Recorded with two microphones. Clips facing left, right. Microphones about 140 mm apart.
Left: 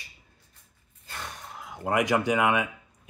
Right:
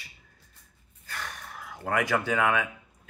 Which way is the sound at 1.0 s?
25° left (ahead or behind).